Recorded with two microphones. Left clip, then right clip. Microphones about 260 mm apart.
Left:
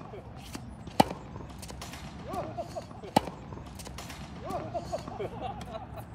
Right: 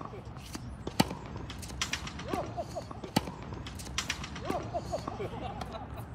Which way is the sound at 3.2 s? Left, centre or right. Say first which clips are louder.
Left 6 dB; centre.